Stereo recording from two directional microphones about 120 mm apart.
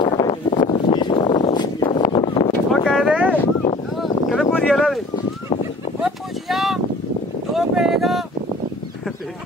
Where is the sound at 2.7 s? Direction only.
Centre (ahead or behind).